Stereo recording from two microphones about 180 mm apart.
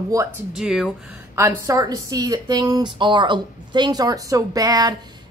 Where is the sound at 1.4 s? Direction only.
15° right (ahead or behind).